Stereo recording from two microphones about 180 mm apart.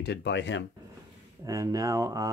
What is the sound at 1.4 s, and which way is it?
Speech, 20° right (ahead or behind).